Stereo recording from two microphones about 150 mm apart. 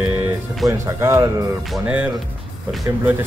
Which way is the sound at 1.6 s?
5° right (ahead or behind).